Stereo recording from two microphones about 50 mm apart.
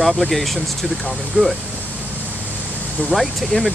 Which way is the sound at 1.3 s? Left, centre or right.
Centre.